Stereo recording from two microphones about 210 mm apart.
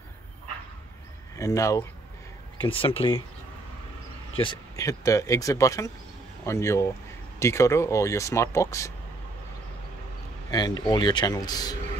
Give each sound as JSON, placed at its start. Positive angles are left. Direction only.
{"t": 1.3, "sound": "speech", "side_deg": 15}
{"t": 4.4, "sound": "speech", "side_deg": 20}
{"t": 10.5, "sound": "speech", "side_deg": 20}